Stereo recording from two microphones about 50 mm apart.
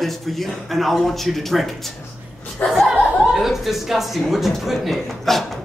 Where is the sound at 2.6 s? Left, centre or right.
Left.